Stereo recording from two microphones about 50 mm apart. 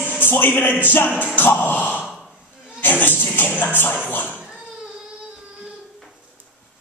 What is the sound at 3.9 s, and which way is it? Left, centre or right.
Speech, left.